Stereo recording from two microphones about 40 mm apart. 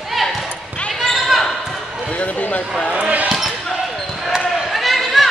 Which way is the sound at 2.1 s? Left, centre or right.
Left.